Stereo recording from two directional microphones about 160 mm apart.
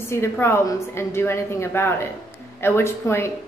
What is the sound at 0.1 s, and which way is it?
A woman's voice, 15° left (ahead or behind).